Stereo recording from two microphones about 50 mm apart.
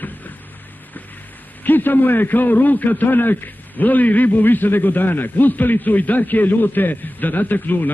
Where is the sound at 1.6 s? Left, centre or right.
Left.